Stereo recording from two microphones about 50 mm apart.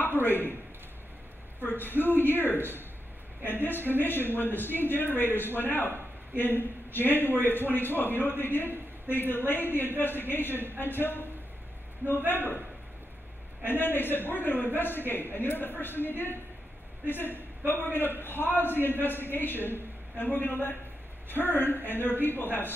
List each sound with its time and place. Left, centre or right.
0.0 s a man's voice: left
1.6 s a man's voice: left
13.7 s a man's voice: left